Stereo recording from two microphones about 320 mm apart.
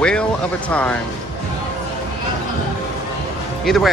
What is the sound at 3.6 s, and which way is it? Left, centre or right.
Speech, centre.